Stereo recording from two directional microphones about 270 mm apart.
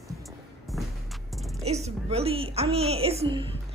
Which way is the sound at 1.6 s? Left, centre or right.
Right.